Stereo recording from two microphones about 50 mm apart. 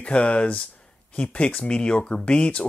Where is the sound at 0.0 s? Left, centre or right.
Left.